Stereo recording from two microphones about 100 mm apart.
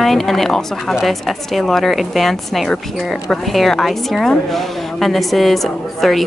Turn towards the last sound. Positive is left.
turn(degrees=0)  # may be behind; listen again after turning